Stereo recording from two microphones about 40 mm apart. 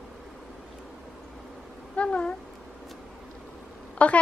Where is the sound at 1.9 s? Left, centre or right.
Left.